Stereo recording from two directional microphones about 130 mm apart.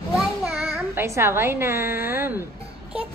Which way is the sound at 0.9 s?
20° right (ahead or behind).